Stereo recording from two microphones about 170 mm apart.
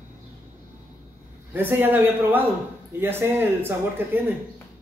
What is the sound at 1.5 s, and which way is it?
Speech, 10° right (ahead or behind).